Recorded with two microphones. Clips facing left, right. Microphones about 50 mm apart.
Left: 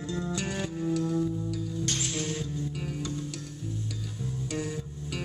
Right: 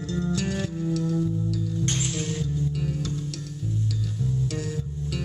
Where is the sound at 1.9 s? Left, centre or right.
Centre.